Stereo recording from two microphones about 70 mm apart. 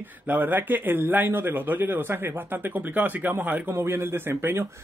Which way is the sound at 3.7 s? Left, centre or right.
Right.